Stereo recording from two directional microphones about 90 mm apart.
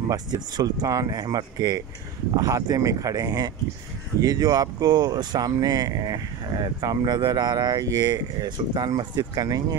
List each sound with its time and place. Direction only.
0.1 s speech: 50° right (ahead or behind)